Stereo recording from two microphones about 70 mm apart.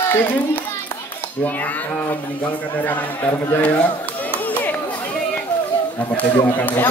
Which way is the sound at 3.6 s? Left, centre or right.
Left.